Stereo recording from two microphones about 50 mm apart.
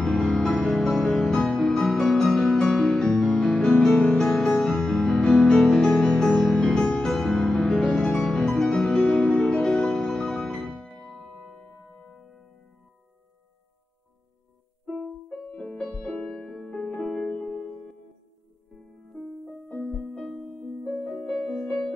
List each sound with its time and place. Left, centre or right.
0.0 s music: centre
11.9 s music: centre
15.2 s music: left
17.5 s music: left
18.7 s music: centre
20.4 s music: centre